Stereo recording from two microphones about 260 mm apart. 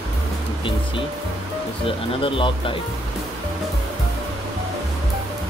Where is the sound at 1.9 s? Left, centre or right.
Centre.